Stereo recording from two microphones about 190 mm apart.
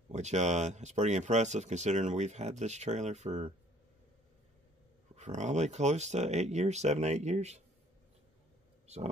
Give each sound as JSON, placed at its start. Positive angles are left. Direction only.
{"t": 0.1, "sound": "speech", "side_deg": -35}
{"t": 5.1, "sound": "speech", "side_deg": -35}
{"t": 8.8, "sound": "speech", "side_deg": -35}